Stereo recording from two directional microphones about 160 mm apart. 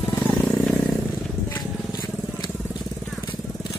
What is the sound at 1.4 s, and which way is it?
Vehicle, 15° left (ahead or behind).